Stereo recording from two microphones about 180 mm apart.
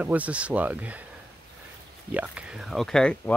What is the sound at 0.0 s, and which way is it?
Speech, 10° right (ahead or behind).